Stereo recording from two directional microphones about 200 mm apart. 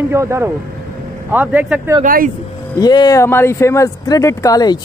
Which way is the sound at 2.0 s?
45° right (ahead or behind).